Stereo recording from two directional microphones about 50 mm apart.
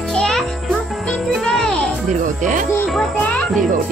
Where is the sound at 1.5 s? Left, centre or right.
Centre.